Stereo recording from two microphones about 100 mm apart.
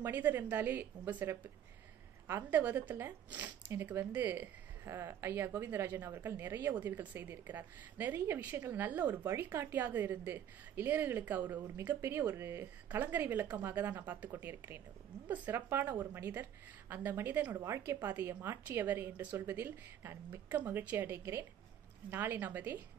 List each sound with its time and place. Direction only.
0.0 s speech: 20° right (ahead or behind)